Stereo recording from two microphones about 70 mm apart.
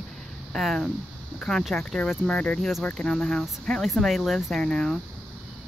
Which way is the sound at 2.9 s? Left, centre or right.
Centre.